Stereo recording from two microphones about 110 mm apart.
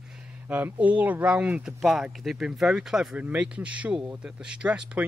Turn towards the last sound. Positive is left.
turn(degrees=-10)  # may be behind; listen again after turning